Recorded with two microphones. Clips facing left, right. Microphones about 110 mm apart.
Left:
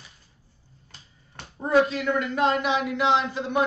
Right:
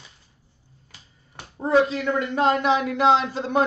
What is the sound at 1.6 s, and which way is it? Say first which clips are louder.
Speech: right 1 dB; 30° right (ahead or behind).